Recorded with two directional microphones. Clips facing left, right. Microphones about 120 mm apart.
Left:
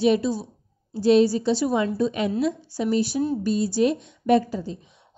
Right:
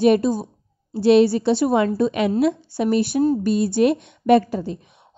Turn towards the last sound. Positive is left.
turn(degrees=-65)  # may be behind; listen again after turning